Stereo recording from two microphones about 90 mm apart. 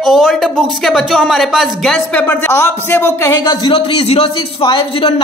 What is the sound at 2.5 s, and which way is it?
A man's voice, 25° left (ahead or behind).